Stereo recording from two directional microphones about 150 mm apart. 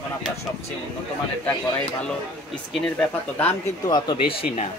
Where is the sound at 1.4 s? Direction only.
5° left (ahead or behind).